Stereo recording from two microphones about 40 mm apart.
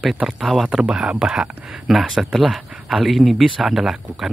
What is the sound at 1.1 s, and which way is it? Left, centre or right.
Speech, right.